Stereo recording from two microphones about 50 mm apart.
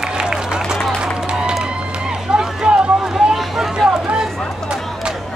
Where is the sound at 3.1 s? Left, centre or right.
Centre.